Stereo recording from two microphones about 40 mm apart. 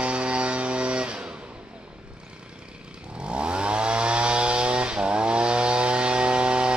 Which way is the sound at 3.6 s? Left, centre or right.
Right.